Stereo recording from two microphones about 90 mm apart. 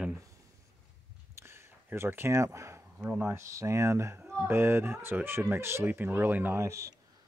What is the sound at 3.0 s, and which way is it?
Speech, 20° right (ahead or behind).